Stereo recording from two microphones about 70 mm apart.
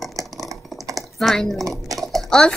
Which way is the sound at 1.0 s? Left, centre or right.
Centre.